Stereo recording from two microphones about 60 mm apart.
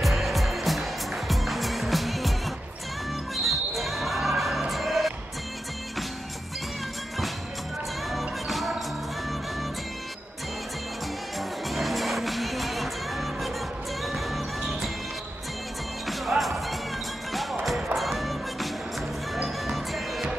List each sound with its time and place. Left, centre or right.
0.0 s music: centre
3.4 s basketball bounce: centre
8.1 s music: centre
11.3 s music: centre
16.1 s music: centre